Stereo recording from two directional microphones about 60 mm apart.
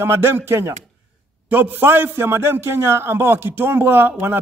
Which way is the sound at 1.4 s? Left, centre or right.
Right.